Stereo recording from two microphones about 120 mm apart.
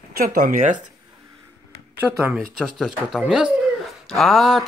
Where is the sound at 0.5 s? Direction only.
90° right.